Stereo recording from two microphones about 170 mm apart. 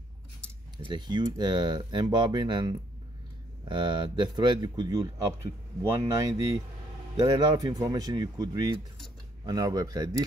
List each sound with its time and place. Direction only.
0.8 s speech: 25° right (ahead or behind)